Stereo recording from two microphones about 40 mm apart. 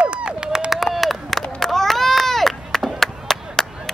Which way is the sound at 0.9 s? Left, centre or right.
Centre.